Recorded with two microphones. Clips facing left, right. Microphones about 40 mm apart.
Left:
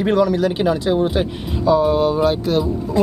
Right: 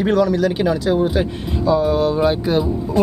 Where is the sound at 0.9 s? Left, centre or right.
Left.